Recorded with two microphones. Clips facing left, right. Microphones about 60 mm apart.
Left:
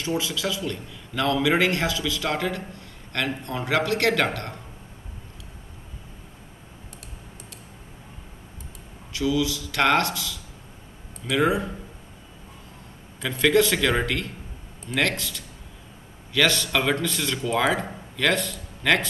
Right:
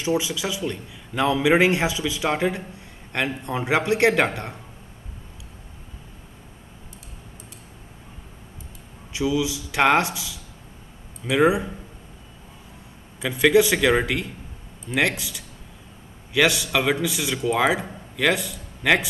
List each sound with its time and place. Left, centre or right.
0.0 s a man's voice: centre
9.1 s a man's voice: centre
13.2 s a man's voice: centre